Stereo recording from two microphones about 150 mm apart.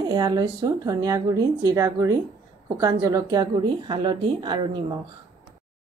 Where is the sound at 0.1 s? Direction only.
25° right (ahead or behind).